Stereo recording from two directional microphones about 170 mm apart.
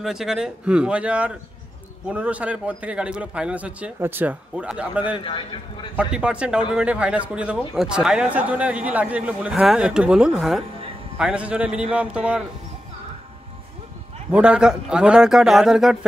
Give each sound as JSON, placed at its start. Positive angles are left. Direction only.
{"t": 0.0, "sound": "a man's voice", "side_deg": -5}
{"t": 5.2, "sound": "a man's voice", "side_deg": 30}
{"t": 5.9, "sound": "a man's voice", "side_deg": -5}
{"t": 14.3, "sound": "a man's voice", "side_deg": -5}